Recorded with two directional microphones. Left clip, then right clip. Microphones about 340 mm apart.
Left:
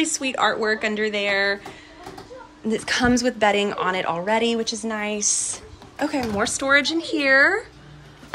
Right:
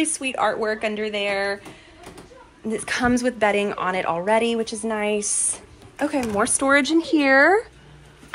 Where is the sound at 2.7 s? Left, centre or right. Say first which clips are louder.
Left 1 dB; centre.